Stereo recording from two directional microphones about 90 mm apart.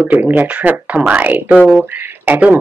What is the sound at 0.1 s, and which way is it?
Speech, 20° right (ahead or behind).